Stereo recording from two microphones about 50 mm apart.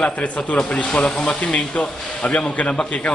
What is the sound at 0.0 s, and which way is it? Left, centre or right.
Speech, left.